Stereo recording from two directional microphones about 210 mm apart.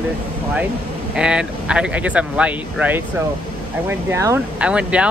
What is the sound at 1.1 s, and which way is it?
Speech, 5° right (ahead or behind).